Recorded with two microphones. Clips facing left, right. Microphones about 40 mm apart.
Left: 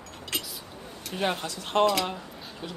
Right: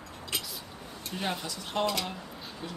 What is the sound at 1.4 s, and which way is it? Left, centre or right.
Speech, left.